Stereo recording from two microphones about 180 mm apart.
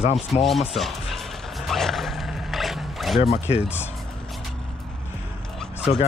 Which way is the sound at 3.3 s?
35° left (ahead or behind).